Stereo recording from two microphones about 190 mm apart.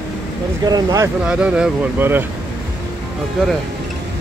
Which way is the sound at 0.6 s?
20° right (ahead or behind).